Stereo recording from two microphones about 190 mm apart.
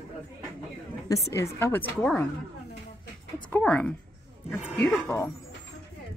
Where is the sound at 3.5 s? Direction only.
10° left (ahead or behind).